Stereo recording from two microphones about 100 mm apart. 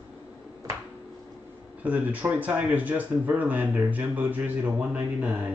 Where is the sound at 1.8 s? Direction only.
15° right (ahead or behind).